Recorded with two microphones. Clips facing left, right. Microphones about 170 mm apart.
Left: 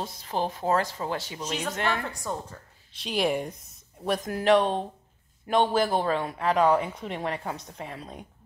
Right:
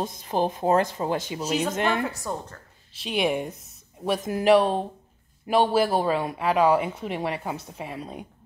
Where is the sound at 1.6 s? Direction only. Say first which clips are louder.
Right 1 dB; 20° right (ahead or behind).